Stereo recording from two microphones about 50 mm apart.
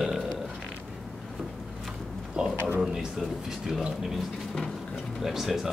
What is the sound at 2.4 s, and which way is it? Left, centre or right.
Speech, right.